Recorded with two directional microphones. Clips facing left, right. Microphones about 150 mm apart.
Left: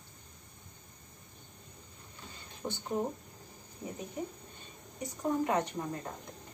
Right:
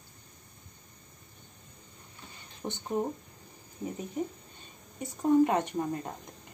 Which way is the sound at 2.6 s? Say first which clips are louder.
Right 1 dB; 15° right (ahead or behind).